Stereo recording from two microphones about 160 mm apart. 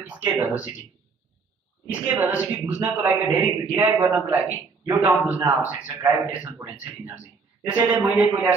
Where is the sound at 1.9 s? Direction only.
10° right (ahead or behind).